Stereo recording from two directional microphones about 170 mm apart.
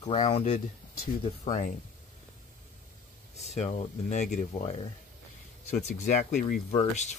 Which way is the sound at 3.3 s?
40° left (ahead or behind).